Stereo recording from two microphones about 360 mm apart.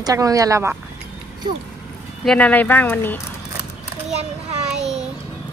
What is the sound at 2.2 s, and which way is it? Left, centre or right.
A woman's voice, centre.